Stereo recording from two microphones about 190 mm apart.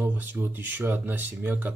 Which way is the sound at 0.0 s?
10° right (ahead or behind).